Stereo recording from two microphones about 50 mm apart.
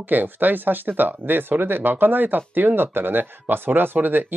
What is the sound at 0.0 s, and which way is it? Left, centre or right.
Speech, right.